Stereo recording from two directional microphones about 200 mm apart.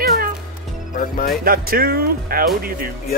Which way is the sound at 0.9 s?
45° left (ahead or behind).